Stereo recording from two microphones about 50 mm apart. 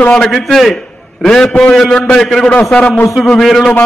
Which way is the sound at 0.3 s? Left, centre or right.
Centre.